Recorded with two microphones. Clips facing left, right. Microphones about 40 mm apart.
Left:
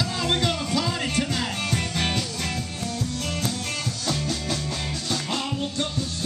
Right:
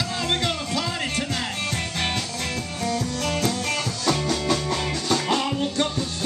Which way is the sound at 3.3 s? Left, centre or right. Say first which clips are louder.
Right 4 dB; right.